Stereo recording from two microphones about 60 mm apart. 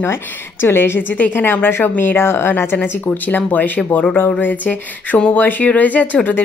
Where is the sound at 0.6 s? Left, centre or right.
Left.